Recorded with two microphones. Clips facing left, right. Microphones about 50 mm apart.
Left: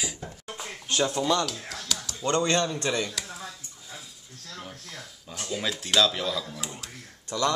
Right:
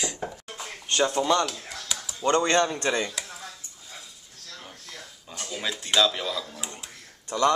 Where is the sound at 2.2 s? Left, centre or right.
Right.